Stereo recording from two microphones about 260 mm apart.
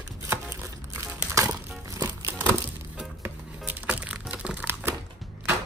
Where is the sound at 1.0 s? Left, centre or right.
Centre.